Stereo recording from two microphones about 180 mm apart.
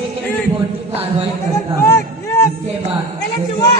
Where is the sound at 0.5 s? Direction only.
30° right (ahead or behind).